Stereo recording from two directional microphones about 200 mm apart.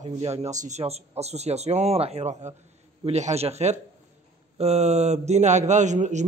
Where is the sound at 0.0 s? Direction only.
30° right (ahead or behind).